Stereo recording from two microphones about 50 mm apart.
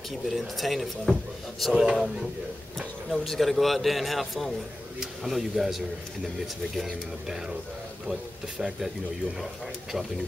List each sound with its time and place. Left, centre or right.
0.1 s speech: centre
1.1 s speech: right
1.7 s speech: centre
3.1 s speech: centre